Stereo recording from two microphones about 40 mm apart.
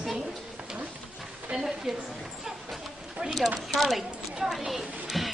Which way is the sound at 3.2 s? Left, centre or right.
Centre.